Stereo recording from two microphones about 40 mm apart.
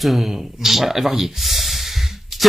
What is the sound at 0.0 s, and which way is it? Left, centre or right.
Speech, centre.